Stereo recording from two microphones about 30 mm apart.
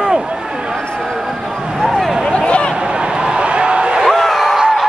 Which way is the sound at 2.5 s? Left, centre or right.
Left.